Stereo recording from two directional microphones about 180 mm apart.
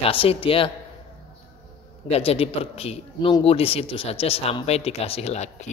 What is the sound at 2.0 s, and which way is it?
Speech, 35° left (ahead or behind).